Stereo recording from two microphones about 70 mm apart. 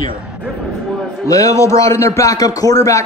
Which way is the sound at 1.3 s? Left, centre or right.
Left.